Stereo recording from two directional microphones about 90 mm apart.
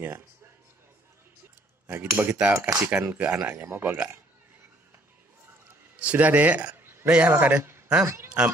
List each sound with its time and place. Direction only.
1.9 s speech: 25° right (ahead or behind)
5.9 s a man's voice: 15° right (ahead or behind)
7.1 s speech: 10° right (ahead or behind); by 8.3 s 30° right (ahead or behind)